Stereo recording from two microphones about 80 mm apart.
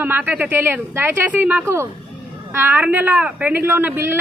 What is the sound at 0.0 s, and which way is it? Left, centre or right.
A man's voice, right.